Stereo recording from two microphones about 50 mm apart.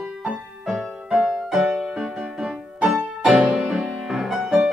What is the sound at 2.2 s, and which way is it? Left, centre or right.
Music, right.